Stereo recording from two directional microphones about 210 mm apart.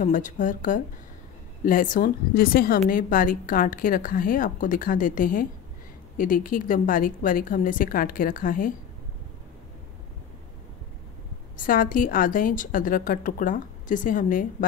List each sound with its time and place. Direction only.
0.0 s a woman's voice: 40° left (ahead or behind)
11.5 s a woman's voice: 40° left (ahead or behind)